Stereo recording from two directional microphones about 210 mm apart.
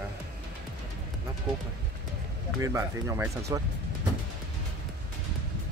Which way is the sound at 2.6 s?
15° right (ahead or behind).